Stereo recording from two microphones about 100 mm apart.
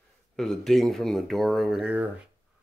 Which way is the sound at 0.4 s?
5° left (ahead or behind).